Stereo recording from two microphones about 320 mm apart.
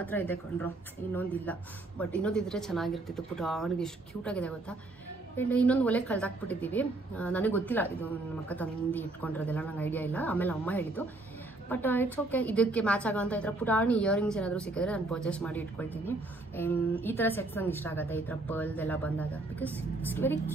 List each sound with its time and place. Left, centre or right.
0.0 s a woman's voice: centre